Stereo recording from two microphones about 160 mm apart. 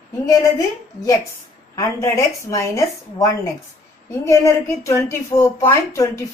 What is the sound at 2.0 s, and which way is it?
A woman's voice, 20° left (ahead or behind).